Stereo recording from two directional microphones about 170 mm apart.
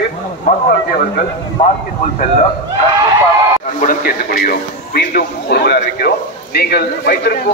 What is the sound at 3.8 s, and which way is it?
A man's voice, 55° left (ahead or behind).